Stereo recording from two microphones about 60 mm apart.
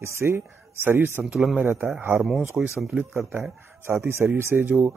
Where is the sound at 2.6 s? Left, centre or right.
Centre.